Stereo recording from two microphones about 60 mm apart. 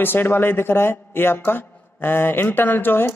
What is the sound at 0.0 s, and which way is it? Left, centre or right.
A woman's voice, left.